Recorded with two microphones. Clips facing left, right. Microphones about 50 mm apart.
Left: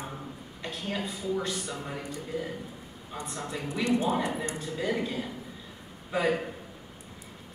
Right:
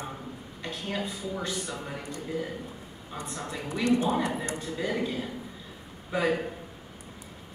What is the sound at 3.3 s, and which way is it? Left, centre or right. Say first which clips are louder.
A man's voice: even; centre.